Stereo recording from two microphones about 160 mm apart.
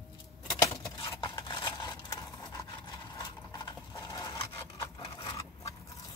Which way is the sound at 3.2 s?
25° left (ahead or behind).